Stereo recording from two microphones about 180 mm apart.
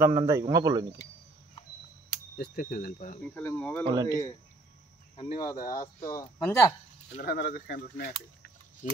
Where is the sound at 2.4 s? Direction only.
55° left (ahead or behind).